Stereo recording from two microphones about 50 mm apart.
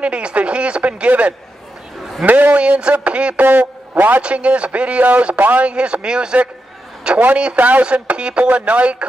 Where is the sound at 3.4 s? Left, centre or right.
Right.